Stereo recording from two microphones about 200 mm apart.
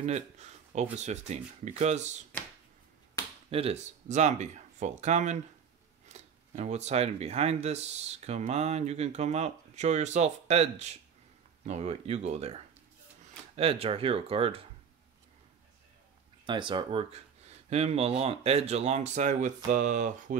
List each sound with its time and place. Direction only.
0.0 s speech: 35° right (ahead or behind)
3.4 s speech: 30° right (ahead or behind)
13.6 s speech: 30° right (ahead or behind)
16.4 s speech: 25° right (ahead or behind); by 20.3 s 40° right (ahead or behind)